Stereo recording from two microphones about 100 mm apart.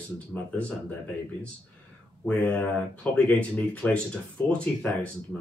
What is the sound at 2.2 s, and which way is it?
Speech, 10° left (ahead or behind).